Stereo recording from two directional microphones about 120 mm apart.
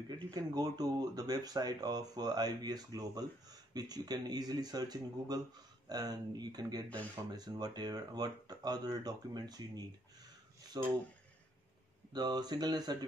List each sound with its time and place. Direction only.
0.1 s speech: 30° right (ahead or behind)
12.1 s speech: 35° right (ahead or behind)